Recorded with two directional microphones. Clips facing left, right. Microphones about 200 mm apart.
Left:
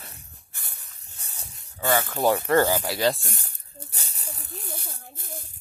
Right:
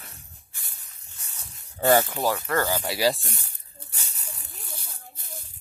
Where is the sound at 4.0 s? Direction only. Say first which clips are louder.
Left 2 dB; 35° left (ahead or behind).